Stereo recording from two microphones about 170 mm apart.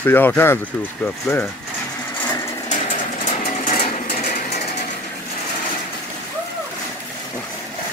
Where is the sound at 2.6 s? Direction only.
45° left (ahead or behind).